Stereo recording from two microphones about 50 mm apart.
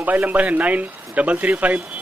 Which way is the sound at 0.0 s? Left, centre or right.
Right.